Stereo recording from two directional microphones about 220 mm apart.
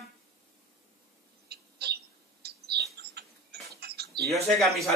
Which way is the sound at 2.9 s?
45° right (ahead or behind).